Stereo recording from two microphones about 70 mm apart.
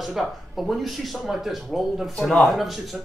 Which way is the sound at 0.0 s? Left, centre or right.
Centre.